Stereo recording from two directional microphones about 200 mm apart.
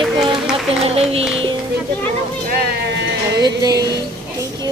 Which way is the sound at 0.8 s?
30° right (ahead or behind).